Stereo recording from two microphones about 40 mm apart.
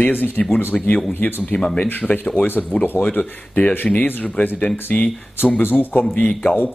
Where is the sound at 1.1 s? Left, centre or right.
Left.